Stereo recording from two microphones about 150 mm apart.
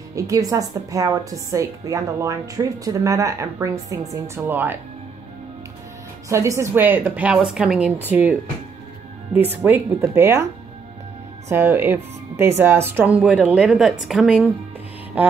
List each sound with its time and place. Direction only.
0.1 s a woman's voice: 20° right (ahead or behind)
6.2 s speech: 20° right (ahead or behind)
11.4 s speech: 15° right (ahead or behind)